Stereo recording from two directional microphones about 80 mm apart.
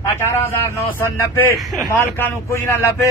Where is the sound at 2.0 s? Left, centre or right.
Left.